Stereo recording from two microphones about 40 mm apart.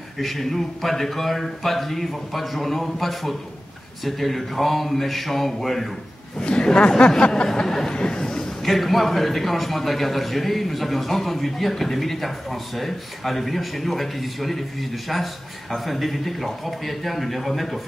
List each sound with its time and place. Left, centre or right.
0.2 s a man's voice: centre
6.4 s a sound: left
7.6 s a man's voice: centre